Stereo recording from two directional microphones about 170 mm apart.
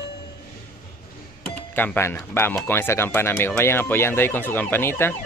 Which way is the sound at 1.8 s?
10° left (ahead or behind).